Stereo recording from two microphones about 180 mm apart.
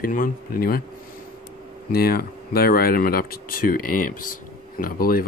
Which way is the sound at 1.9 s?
55° left (ahead or behind).